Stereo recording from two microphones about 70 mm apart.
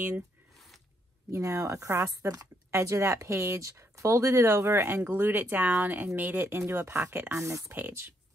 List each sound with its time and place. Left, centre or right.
1.3 s speech: right
2.7 s speech: right